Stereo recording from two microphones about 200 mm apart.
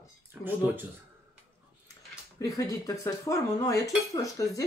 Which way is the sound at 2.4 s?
15° left (ahead or behind).